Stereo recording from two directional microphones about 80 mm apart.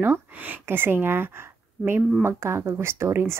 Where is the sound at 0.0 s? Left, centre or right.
Right.